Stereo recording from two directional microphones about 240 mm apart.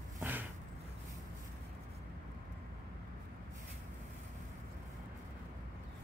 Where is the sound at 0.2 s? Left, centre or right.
Centre.